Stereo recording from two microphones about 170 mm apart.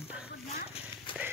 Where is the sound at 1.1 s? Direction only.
30° left (ahead or behind).